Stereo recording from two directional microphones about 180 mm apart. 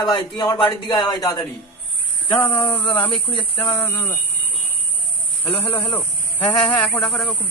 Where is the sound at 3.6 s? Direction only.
10° left (ahead or behind).